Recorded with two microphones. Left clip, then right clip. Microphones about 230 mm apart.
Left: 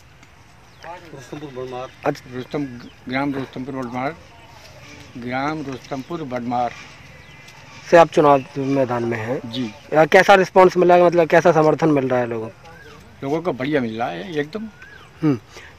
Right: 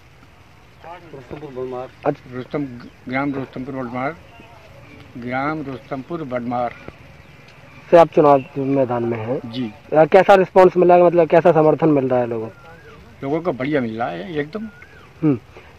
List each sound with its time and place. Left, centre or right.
1.6 s speech: left
2.3 s speech: centre
5.2 s speech: centre
7.9 s speech: left
10.7 s speech: left
13.2 s speech: centre